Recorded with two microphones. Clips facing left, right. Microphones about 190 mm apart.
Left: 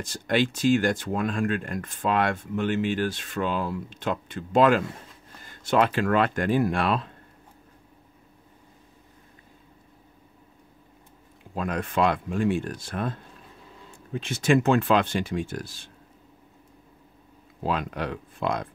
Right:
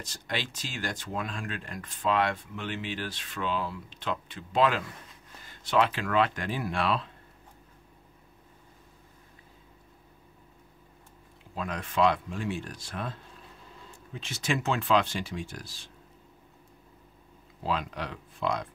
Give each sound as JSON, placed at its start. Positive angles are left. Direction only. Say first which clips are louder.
{"t": 0.0, "sound": "speech", "louder": "left 11 dB", "side_deg": 50}
{"t": 11.5, "sound": "speech", "louder": "left 4 dB", "side_deg": 50}
{"t": 17.6, "sound": "speech", "louder": "left 4 dB", "side_deg": 50}